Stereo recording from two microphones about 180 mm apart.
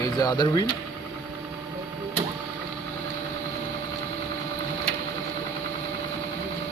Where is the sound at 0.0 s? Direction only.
20° left (ahead or behind).